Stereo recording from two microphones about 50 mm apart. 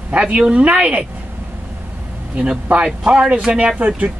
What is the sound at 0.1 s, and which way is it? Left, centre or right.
Speech, right.